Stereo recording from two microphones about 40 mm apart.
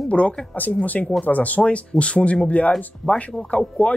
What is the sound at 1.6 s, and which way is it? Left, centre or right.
Speech, left.